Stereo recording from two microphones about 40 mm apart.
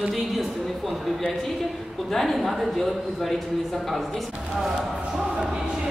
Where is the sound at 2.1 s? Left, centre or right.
Centre.